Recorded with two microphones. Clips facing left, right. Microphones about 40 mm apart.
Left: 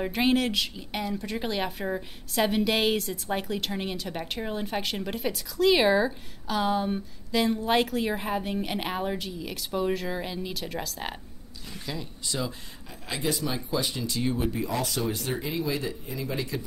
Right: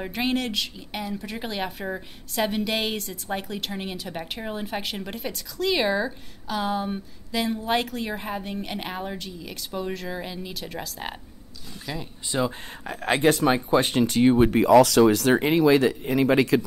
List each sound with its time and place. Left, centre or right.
0.0 s a woman's voice: centre
11.8 s speech: centre
12.3 s speech: right
12.8 s speech: right
14.5 s speech: right